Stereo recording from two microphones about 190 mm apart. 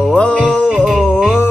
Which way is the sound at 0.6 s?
5° right (ahead or behind).